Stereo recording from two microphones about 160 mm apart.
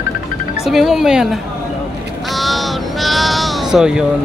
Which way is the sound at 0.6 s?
Centre (ahead or behind).